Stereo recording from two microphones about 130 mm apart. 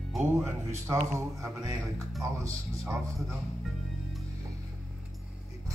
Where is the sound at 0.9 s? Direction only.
25° right (ahead or behind).